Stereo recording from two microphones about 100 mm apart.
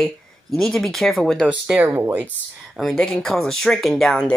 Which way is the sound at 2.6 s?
Centre (ahead or behind).